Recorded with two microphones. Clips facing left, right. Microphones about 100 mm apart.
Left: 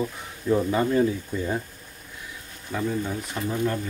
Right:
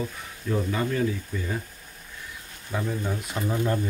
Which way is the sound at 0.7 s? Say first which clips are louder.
Left 4 dB; 25° left (ahead or behind).